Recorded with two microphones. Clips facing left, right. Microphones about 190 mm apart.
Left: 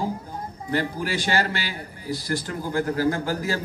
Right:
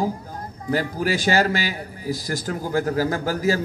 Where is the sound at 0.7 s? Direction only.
45° right (ahead or behind).